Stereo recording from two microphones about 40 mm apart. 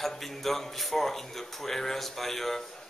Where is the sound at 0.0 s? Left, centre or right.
Centre.